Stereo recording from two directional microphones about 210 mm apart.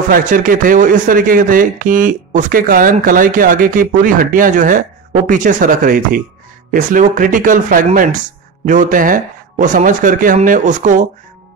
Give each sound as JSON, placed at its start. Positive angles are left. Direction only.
{"t": 0.1, "sound": "speech", "side_deg": -40}